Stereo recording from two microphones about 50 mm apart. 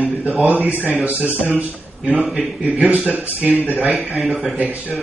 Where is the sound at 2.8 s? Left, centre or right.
Right.